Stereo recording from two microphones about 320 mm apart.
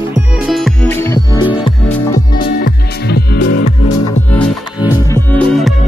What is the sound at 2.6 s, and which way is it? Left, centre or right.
Music, left.